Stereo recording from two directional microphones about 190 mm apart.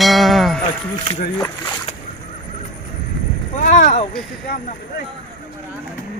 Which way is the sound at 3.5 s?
40° left (ahead or behind).